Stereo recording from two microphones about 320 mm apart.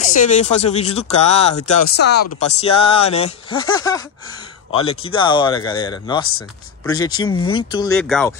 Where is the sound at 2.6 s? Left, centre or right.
Centre.